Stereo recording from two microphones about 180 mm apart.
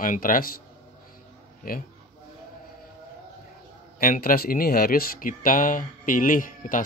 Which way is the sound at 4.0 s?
50° left (ahead or behind).